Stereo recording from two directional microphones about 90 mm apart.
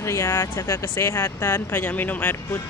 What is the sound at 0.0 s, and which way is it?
Speech, 35° left (ahead or behind).